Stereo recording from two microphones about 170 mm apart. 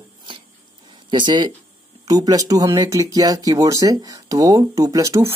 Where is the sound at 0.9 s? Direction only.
25° right (ahead or behind).